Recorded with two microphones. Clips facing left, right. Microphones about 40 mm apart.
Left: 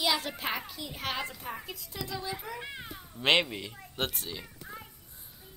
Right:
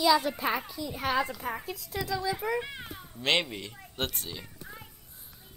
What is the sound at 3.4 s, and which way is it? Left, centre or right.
A child's voice, centre.